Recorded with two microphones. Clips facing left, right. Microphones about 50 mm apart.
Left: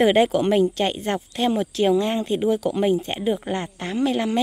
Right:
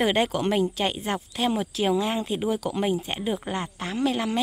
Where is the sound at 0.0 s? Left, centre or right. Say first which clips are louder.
Left 6 dB; centre.